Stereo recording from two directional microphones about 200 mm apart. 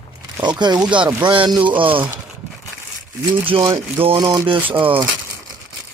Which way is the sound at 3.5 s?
25° right (ahead or behind).